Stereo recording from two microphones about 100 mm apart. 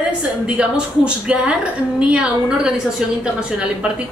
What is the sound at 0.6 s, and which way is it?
Speech, 10° right (ahead or behind).